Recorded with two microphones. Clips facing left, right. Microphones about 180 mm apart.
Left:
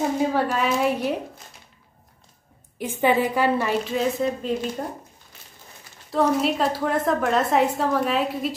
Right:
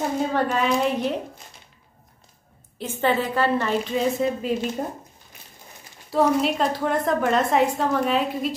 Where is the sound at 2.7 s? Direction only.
10° left (ahead or behind).